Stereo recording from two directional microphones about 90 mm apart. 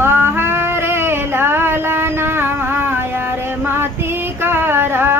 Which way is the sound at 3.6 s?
25° right (ahead or behind).